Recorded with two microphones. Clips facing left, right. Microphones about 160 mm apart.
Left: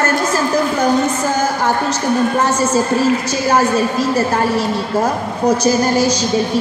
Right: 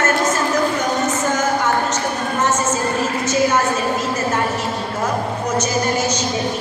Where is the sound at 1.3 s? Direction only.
35° left (ahead or behind).